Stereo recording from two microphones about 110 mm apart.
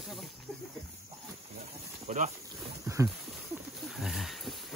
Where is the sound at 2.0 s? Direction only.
90° right.